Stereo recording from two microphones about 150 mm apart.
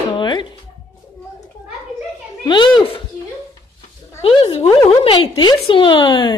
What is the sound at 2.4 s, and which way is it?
Speech, 30° left (ahead or behind).